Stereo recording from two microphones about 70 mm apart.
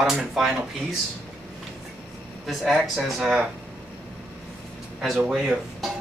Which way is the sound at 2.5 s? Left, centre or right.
Centre.